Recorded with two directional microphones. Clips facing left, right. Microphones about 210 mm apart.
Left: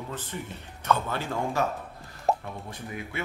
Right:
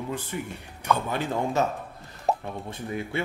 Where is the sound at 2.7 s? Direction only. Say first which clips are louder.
Right 8 dB; 30° right (ahead or behind).